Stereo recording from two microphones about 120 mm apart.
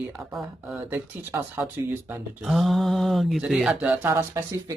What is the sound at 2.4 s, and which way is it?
Speech, centre (ahead or behind).